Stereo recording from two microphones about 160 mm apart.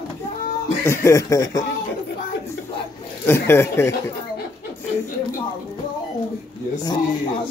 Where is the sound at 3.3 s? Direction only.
15° left (ahead or behind).